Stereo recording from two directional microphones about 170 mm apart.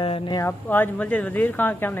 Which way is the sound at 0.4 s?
10° left (ahead or behind).